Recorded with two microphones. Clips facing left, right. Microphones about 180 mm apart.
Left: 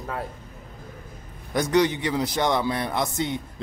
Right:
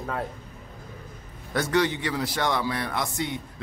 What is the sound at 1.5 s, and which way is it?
A man's voice, 15° left (ahead or behind).